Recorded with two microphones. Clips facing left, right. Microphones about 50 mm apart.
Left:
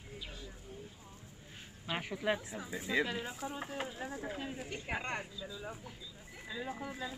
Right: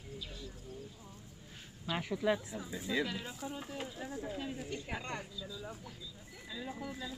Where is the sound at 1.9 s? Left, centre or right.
Left.